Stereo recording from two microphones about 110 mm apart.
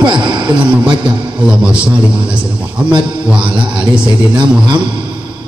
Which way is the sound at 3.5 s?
45° right (ahead or behind).